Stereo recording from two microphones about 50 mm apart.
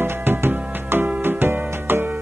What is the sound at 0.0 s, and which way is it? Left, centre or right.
Music, right.